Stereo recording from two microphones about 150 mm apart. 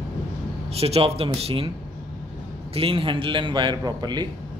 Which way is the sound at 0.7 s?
45° right (ahead or behind).